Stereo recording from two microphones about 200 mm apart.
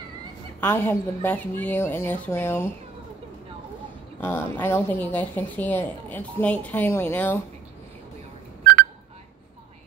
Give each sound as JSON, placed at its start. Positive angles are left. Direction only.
{"t": 0.6, "sound": "a woman's voice", "side_deg": 10}
{"t": 4.2, "sound": "a woman's voice", "side_deg": 10}